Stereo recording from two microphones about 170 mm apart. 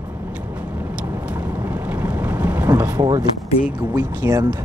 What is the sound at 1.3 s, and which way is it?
Boat, 10° right (ahead or behind).